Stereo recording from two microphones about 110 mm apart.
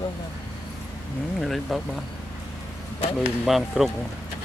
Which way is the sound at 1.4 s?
Centre (ahead or behind).